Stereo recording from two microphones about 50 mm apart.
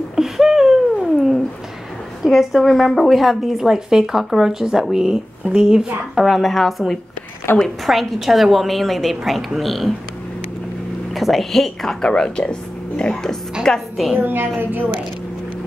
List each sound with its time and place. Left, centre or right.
0.1 s a sound: centre
2.2 s a woman's voice: centre
3.2 s speech: centre
7.5 s a woman's voice: left
7.8 s a woman's voice: centre
11.1 s a woman's voice: centre
12.1 s a woman's voice: centre
14.1 s a woman's voice: right